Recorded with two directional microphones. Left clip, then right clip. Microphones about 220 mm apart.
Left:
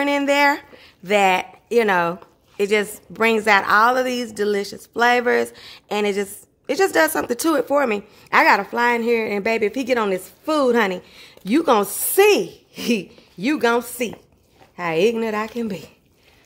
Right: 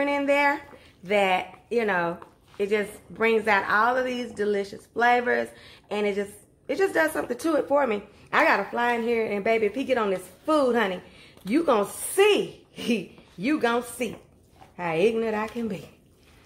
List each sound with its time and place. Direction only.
0.0 s speech: 50° left (ahead or behind)